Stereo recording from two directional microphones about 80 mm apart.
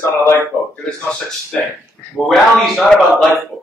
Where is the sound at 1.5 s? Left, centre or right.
Centre.